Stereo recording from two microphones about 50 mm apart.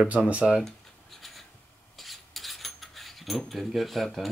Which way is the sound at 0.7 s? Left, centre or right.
Centre.